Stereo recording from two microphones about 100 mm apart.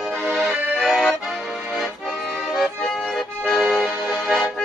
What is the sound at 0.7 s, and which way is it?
Accordion, centre (ahead or behind).